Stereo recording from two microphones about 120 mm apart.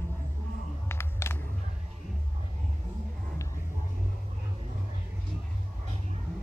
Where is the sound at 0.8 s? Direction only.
20° left (ahead or behind).